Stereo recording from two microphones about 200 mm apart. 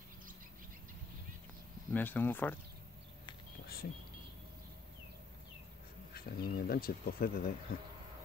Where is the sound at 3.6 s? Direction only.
50° left (ahead or behind).